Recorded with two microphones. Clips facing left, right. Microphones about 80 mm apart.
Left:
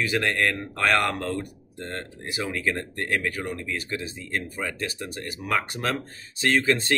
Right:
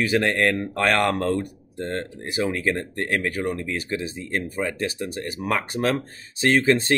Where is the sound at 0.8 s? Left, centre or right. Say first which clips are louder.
Right 2 dB; right.